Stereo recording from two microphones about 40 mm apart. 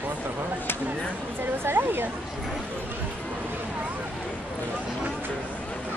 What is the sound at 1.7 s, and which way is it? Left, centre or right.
Speech, right.